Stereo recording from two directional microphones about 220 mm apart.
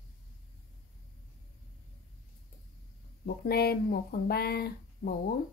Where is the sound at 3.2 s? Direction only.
45° left (ahead or behind).